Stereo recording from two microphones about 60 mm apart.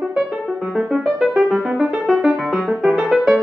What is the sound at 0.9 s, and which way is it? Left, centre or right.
Music, centre.